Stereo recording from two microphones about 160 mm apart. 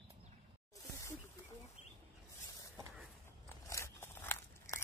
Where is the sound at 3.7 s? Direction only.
15° left (ahead or behind).